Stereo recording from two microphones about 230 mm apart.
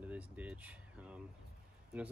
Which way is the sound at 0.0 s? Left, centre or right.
Centre.